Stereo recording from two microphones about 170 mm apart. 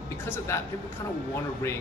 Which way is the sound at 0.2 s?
15° left (ahead or behind).